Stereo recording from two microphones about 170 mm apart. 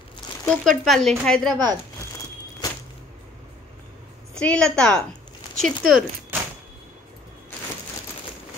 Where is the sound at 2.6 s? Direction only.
25° left (ahead or behind).